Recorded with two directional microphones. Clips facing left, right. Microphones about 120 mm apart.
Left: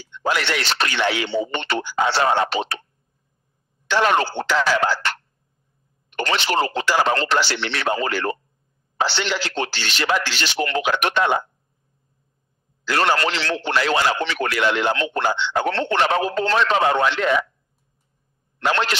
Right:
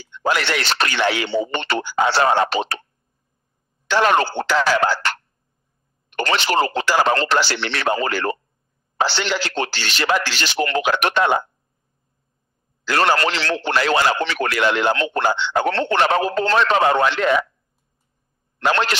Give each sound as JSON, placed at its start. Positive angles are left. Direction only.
{"t": 0.2, "sound": "a man's voice", "side_deg": -40}
{"t": 3.8, "sound": "a man's voice", "side_deg": -45}
{"t": 6.1, "sound": "a man's voice", "side_deg": -40}
{"t": 7.5, "sound": "a man's voice", "side_deg": -55}
{"t": 12.8, "sound": "a man's voice", "side_deg": -45}